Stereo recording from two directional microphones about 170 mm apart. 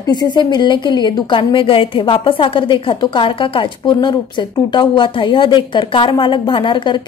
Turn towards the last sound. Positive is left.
turn(degrees=30)  # may be behind; listen again after turning